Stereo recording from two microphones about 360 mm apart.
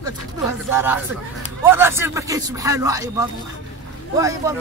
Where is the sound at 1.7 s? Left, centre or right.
Centre.